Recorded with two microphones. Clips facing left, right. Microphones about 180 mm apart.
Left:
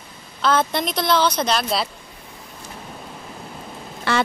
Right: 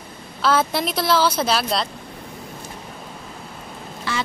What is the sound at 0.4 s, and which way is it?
Speech, 5° right (ahead or behind).